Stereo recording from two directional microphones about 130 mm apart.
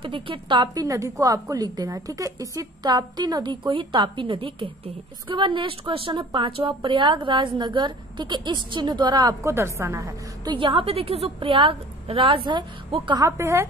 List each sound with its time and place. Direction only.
0.0 s a woman's voice: 40° right (ahead or behind)
9.4 s a woman's voice: 20° right (ahead or behind)
10.4 s a woman's voice: 40° right (ahead or behind)
13.2 s a woman's voice: 20° right (ahead or behind)